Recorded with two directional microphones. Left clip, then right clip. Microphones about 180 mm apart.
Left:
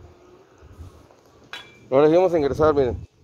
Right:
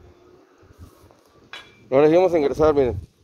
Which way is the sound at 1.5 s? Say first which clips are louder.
Left 2 dB; 70° left (ahead or behind).